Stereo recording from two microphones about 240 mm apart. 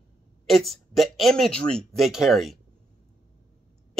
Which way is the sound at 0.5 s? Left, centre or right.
Centre.